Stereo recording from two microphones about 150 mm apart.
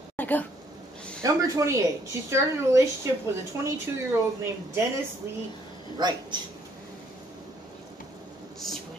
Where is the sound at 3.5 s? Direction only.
20° right (ahead or behind).